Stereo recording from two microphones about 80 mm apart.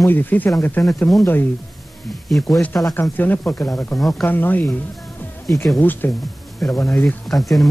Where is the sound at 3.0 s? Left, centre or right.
Left.